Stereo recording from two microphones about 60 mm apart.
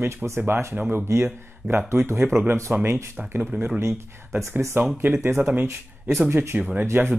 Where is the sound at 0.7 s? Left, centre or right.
Right.